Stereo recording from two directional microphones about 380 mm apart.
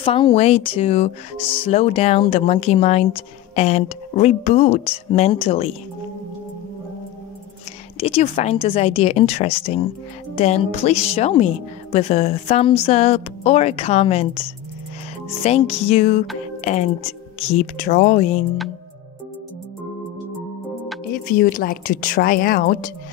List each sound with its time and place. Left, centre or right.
0.0 s speech: centre
8.0 s speech: centre
21.4 s speech: left